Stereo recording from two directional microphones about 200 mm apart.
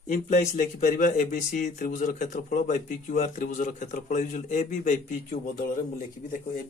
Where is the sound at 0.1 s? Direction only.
40° left (ahead or behind).